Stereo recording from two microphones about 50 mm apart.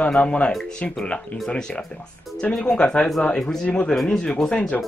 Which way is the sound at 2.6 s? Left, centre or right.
Centre.